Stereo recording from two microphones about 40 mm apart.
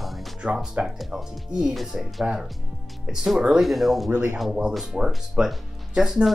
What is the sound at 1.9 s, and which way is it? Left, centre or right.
Speech, centre.